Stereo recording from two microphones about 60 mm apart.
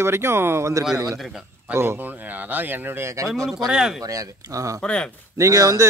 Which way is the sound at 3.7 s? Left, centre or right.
Centre.